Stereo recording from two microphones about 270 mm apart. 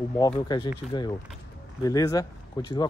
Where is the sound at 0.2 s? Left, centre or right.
Centre.